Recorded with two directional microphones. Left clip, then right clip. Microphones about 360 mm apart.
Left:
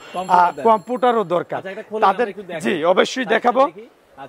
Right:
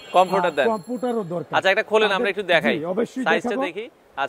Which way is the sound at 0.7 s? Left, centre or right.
Centre.